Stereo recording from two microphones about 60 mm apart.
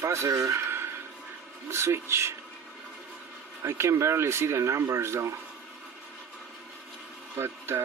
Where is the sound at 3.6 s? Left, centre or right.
Right.